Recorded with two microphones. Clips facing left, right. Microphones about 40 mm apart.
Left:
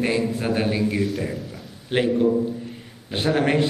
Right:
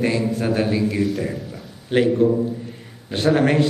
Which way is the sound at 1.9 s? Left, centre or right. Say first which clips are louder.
Right 4 dB; centre.